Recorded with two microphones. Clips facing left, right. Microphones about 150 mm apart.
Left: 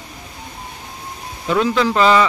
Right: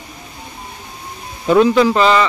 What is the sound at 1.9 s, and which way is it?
Speech, 5° left (ahead or behind).